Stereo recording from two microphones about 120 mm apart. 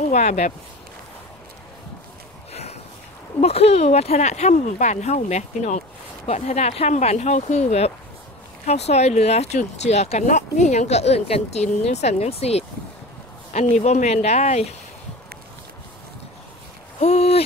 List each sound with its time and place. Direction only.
0.1 s speech: 75° left (ahead or behind)
2.5 s a sound: 65° left (ahead or behind)
3.3 s speech: 60° left (ahead or behind)
13.5 s speech: 70° left (ahead or behind)
17.0 s speech: 60° left (ahead or behind)